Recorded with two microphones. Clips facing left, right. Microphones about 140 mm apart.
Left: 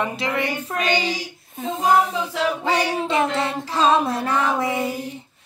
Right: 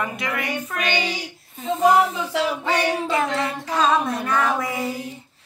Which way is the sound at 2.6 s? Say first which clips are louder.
Left 1 dB; 25° left (ahead or behind).